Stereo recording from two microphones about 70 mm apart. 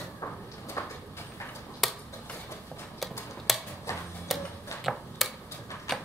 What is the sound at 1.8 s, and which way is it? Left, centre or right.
Finger snapping, centre.